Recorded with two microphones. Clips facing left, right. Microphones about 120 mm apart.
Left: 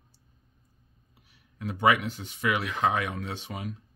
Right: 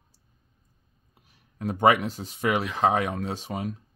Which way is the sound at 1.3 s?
40° right (ahead or behind).